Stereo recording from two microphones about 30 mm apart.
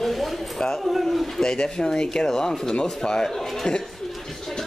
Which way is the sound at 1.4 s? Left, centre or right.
Left.